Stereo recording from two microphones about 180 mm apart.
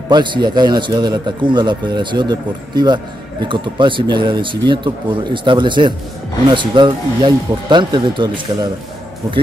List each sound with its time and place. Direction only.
0.1 s a man's voice: 25° right (ahead or behind)